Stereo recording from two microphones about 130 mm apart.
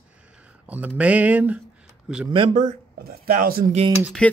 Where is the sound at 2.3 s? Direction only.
40° right (ahead or behind).